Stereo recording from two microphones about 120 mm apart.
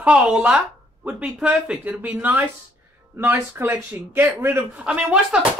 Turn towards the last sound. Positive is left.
turn(degrees=-10)  # may be behind; listen again after turning